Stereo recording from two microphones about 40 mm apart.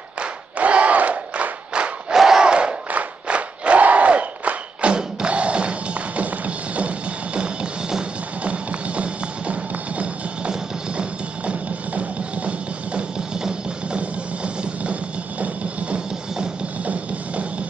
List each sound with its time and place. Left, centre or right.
0.2 s battle cry: right
1.7 s crowd: right
2.1 s battle cry: centre
2.4 s crowd: right
2.9 s battle cry: right
4.9 s music: right
7.3 s music: right
13.3 s music: right